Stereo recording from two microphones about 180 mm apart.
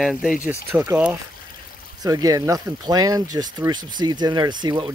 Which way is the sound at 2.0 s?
20° right (ahead or behind).